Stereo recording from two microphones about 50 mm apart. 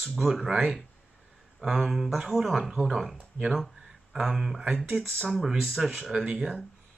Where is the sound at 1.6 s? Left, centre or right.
Centre.